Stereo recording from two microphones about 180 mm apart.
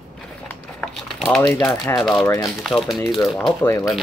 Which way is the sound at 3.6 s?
20° left (ahead or behind).